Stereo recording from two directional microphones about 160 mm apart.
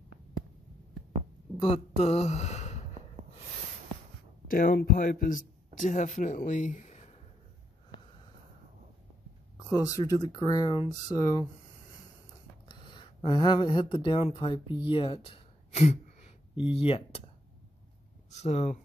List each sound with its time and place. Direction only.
1.6 s speech: 35° left (ahead or behind)
4.5 s speech: 60° left (ahead or behind)
9.7 s speech: 20° left (ahead or behind)
12.6 s speech: 30° left (ahead or behind)
18.3 s speech: 40° left (ahead or behind)